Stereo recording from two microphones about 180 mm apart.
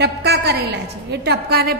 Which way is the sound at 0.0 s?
65° right (ahead or behind).